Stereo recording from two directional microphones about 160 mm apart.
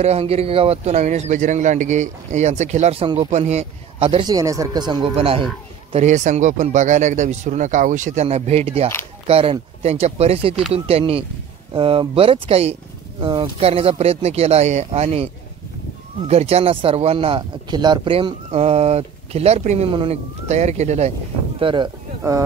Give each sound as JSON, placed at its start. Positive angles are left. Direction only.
{"t": 0.0, "sound": "a man's voice", "side_deg": -40}
{"t": 4.3, "sound": "speech", "side_deg": -20}
{"t": 6.0, "sound": "a man's voice", "side_deg": -50}
{"t": 19.9, "sound": "speech", "side_deg": -30}
{"t": 20.4, "sound": "a man's voice", "side_deg": -45}
{"t": 21.5, "sound": "speech", "side_deg": -30}